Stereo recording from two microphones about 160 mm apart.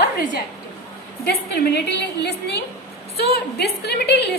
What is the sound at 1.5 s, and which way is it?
Speech, 80° left.